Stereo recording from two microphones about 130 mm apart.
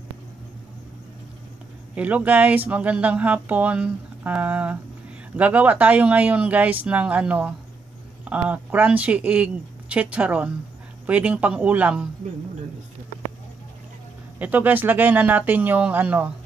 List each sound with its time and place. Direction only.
2.0 s speech: 10° right (ahead or behind)
14.4 s speech: 15° right (ahead or behind)